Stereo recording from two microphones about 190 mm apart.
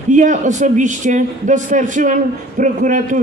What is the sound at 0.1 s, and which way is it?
A man's voice, 40° right (ahead or behind).